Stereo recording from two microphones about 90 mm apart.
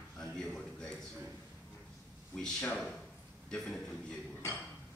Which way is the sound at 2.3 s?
5° left (ahead or behind).